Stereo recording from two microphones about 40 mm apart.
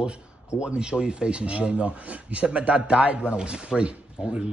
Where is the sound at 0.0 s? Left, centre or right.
Right.